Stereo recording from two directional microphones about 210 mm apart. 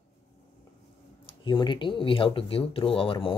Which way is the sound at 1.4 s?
20° left (ahead or behind).